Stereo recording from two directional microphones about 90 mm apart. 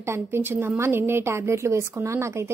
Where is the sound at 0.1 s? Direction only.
25° right (ahead or behind).